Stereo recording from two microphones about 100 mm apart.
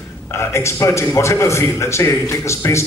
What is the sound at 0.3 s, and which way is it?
A man's voice, 25° left (ahead or behind).